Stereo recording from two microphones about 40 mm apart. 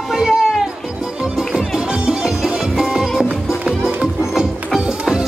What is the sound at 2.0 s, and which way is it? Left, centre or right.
Music, centre.